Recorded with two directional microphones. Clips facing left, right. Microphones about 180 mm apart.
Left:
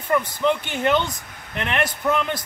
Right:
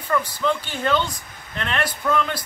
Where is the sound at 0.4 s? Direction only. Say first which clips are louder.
Left 2 dB; 20° left (ahead or behind).